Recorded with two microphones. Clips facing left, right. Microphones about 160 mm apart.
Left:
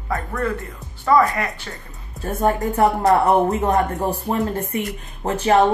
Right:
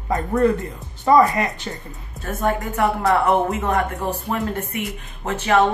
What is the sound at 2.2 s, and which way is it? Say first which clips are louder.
A woman's voice: left 3 dB; 35° left (ahead or behind).